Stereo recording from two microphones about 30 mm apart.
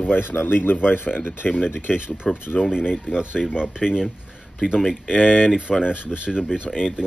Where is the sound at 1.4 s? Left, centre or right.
Left.